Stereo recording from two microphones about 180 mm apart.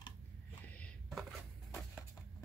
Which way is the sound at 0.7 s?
5° left (ahead or behind).